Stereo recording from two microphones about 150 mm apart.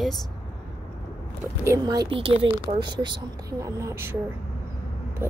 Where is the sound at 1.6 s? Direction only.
25° right (ahead or behind).